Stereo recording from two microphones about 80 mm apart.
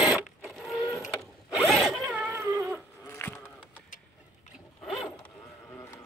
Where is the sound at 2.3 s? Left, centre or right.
Right.